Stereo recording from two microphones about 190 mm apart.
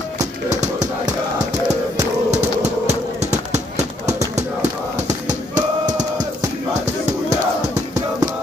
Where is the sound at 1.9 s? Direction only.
35° right (ahead or behind).